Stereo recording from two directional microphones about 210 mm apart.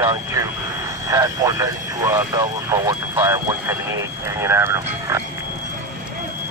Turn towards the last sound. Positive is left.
turn(degrees=-15)  # may be behind; listen again after turning